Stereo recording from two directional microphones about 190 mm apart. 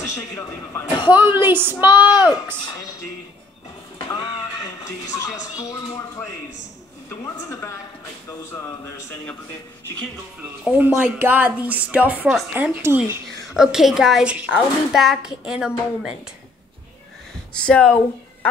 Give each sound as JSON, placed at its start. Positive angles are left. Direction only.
{"t": 0.0, "sound": "speech", "side_deg": 15}
{"t": 1.0, "sound": "speech", "side_deg": -10}
{"t": 4.8, "sound": "speech", "side_deg": 15}
{"t": 8.5, "sound": "speech", "side_deg": 15}
{"t": 10.6, "sound": "a woman's voice", "side_deg": -10}
{"t": 17.6, "sound": "a woman's voice", "side_deg": 5}